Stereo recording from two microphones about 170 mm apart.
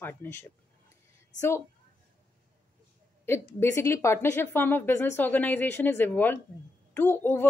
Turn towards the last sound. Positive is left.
turn(degrees=15)  # may be behind; listen again after turning